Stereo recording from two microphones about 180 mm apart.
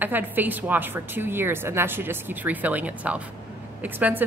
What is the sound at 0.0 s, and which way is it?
A woman's voice, 10° right (ahead or behind).